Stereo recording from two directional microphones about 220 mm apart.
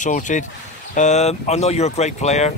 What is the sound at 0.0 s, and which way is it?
Speech, 35° left (ahead or behind).